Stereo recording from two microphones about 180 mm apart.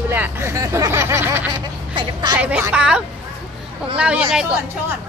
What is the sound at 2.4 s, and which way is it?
Speech, 5° right (ahead or behind).